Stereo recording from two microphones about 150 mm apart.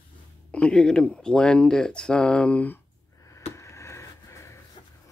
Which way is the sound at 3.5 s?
20° left (ahead or behind).